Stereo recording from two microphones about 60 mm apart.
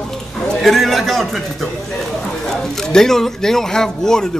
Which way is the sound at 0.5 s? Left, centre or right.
Centre.